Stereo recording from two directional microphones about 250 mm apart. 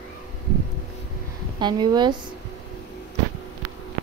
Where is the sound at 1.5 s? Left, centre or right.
Centre.